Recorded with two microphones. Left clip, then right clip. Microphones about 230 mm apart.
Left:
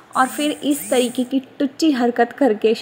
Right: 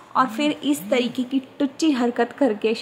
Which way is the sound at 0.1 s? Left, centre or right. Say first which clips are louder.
Left 2 dB; centre.